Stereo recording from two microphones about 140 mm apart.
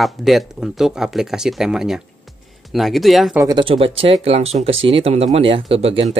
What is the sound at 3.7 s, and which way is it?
Speech, 40° right (ahead or behind).